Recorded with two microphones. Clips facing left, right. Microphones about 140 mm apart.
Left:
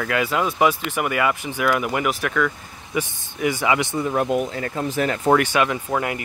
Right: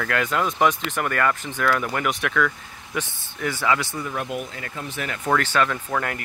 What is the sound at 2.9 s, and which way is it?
Speech, 15° left (ahead or behind).